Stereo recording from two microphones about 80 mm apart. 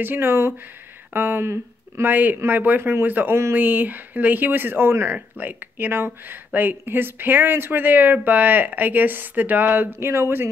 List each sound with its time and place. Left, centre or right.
0.0 s speech: right
2.1 s speech: right